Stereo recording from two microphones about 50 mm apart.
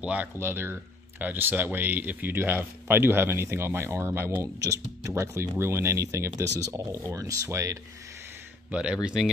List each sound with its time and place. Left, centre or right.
0.0 s speech: right
0.4 s speech: right
1.2 s speech: right
4.4 s speech: right
8.7 s speech: centre